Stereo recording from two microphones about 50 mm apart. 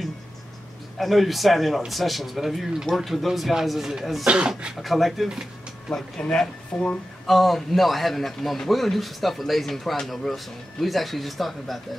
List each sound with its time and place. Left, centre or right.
0.9 s a man's voice: centre
4.3 s speech: right
4.8 s a man's voice: centre
6.3 s speech: left
7.2 s a man's voice: centre